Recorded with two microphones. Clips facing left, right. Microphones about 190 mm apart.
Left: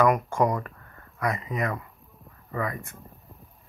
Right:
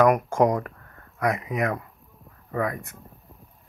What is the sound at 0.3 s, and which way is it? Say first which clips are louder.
Speech: right 3 dB; 45° right (ahead or behind).